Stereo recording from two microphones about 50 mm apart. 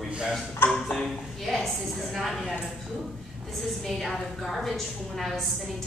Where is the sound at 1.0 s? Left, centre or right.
Centre.